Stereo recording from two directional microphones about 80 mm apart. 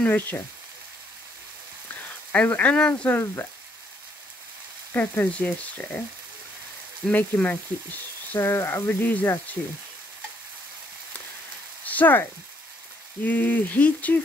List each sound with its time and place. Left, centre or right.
0.0 s frying: left
2.3 s speech: centre
4.9 s frying: left
7.1 s frying: centre
11.8 s a sound: left
13.2 s frying: left